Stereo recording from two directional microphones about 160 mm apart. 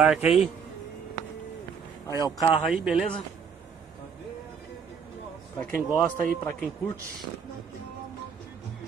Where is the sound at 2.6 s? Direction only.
5° right (ahead or behind).